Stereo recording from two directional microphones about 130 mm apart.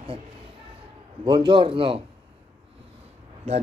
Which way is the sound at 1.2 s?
40° right (ahead or behind).